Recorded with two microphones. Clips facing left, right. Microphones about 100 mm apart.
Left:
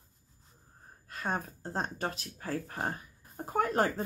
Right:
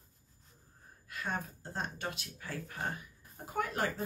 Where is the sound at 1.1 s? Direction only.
35° left (ahead or behind).